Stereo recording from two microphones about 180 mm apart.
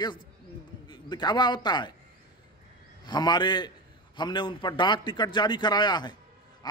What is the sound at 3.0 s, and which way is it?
Speech, 25° left (ahead or behind).